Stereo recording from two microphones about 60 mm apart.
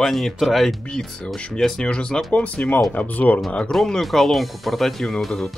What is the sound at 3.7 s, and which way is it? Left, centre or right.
Speech, centre.